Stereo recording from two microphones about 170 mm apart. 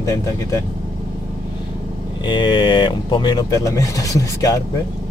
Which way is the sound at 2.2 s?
30° left (ahead or behind).